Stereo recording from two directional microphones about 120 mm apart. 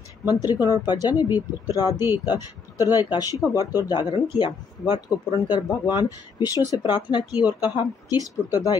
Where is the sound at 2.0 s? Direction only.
20° right (ahead or behind).